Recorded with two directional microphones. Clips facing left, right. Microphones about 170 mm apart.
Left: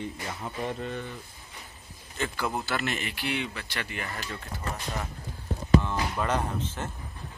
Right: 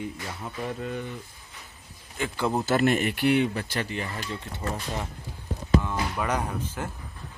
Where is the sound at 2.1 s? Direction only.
15° right (ahead or behind).